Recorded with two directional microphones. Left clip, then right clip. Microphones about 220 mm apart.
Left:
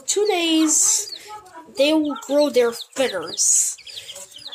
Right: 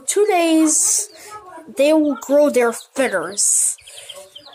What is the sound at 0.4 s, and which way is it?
Speech, 50° right (ahead or behind).